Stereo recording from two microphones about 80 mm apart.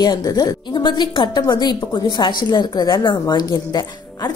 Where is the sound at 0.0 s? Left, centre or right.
Left.